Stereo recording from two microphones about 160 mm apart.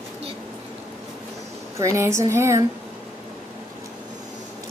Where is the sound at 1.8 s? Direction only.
20° right (ahead or behind).